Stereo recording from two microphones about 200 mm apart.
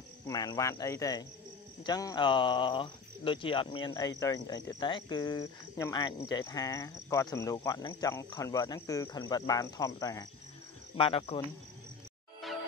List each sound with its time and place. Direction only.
0.3 s speech: 20° left (ahead or behind)
11.0 s speech: 30° left (ahead or behind)
12.4 s music: centre (ahead or behind)